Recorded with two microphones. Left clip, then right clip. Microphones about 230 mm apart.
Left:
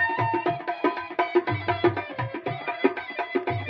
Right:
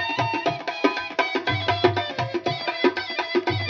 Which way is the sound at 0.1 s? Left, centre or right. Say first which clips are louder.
Right 1 dB; right.